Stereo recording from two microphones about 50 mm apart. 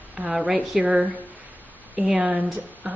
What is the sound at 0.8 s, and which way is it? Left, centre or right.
Speech, right.